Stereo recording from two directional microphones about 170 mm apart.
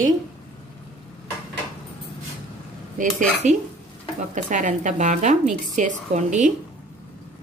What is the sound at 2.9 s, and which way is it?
A woman's voice, 50° right (ahead or behind).